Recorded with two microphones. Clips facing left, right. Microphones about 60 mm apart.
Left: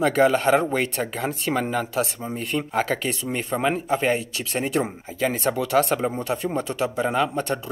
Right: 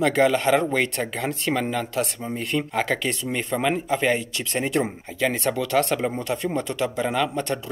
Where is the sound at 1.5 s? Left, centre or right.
Centre.